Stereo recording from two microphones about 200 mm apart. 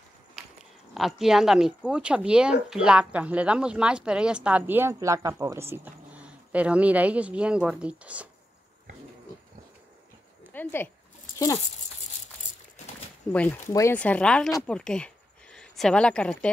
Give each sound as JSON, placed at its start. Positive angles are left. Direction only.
{"t": 0.4, "sound": "livestock", "side_deg": 0}
{"t": 0.9, "sound": "speech", "side_deg": 0}
{"t": 10.5, "sound": "speech", "side_deg": 10}
{"t": 13.3, "sound": "speech", "side_deg": 10}